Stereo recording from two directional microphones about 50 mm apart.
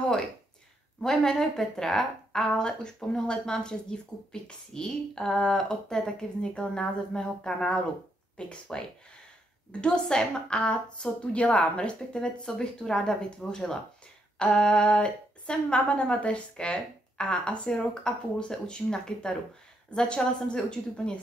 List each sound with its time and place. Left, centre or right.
1.0 s a woman's voice: centre